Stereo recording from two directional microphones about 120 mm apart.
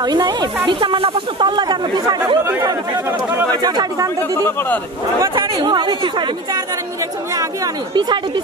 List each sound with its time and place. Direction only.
0.0 s speech: 35° right (ahead or behind)
3.6 s speech: 35° right (ahead or behind)
4.4 s speech: 20° left (ahead or behind)
5.3 s speech: 40° right (ahead or behind)